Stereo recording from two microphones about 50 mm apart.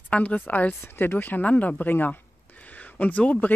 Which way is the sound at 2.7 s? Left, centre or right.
Left.